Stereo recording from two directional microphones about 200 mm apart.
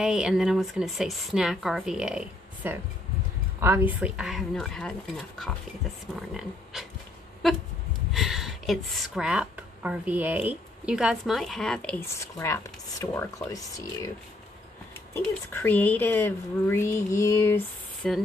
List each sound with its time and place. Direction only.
0.0 s a woman's voice: 5° right (ahead or behind)
8.1 s speech: centre (ahead or behind); by 14.1 s 15° left (ahead or behind)
15.1 s speech: 10° left (ahead or behind)
18.0 s a woman's voice: centre (ahead or behind)